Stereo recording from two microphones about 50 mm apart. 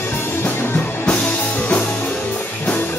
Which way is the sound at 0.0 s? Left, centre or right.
Left.